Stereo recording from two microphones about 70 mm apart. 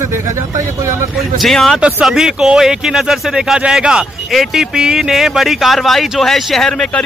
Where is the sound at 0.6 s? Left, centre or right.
Right.